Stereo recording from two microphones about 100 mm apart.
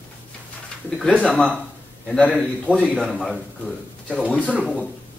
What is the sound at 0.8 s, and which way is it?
A man's voice, 5° left (ahead or behind).